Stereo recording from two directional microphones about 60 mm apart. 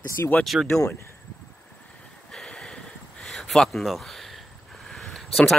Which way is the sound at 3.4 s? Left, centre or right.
Centre.